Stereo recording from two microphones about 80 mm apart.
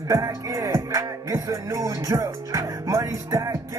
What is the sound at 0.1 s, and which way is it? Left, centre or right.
Music, right.